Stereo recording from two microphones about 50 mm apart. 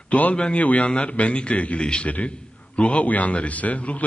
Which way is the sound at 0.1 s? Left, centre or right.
Left.